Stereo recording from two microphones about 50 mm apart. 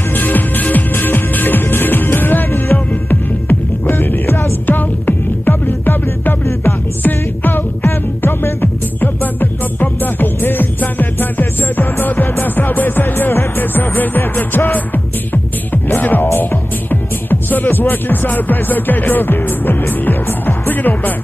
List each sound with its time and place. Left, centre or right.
0.1 s music: left
9.0 s music: left
16.0 s music: left